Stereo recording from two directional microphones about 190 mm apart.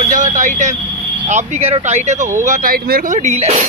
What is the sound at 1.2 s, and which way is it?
Speech, 40° right (ahead or behind).